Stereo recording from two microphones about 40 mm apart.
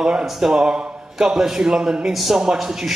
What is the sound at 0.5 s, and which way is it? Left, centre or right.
A man's voice, centre.